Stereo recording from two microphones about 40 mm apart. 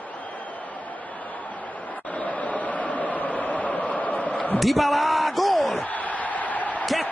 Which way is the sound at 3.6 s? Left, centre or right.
Left.